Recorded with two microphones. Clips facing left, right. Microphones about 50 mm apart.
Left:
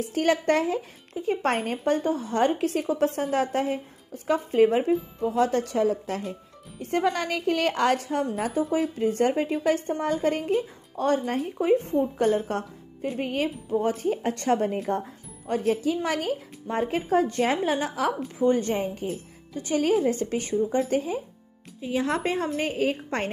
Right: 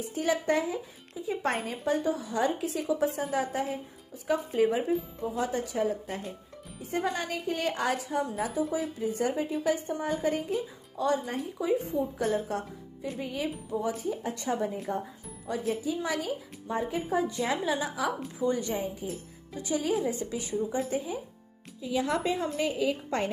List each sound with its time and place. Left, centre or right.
0.0 s speech: left
15.6 s speech: left
20.9 s speech: left
21.8 s speech: left